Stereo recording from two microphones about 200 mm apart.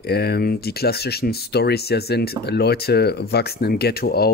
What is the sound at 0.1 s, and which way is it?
Speech, 50° left (ahead or behind).